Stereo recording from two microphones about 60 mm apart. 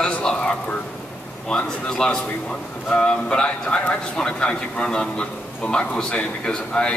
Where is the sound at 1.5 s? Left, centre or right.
Centre.